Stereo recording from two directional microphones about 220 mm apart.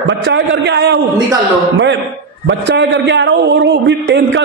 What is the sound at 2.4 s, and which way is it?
A man's voice, 55° right (ahead or behind).